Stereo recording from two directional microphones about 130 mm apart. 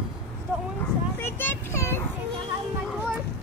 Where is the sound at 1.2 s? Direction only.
20° left (ahead or behind).